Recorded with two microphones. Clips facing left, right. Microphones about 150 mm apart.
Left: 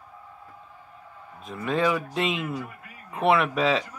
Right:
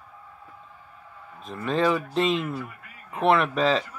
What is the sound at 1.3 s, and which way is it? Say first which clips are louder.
A man's voice: right 1 dB; 5° left (ahead or behind).